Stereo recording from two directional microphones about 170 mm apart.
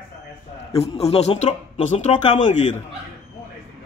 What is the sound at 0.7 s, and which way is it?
A man's voice, 35° left (ahead or behind).